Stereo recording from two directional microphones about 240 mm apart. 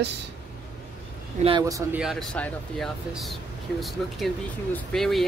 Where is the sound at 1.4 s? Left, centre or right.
Centre.